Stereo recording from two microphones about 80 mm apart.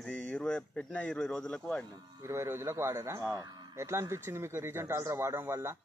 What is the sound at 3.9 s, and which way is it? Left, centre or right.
A man's voice, right.